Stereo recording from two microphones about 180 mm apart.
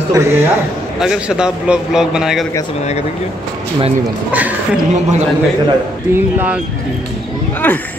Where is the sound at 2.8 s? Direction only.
35° left (ahead or behind).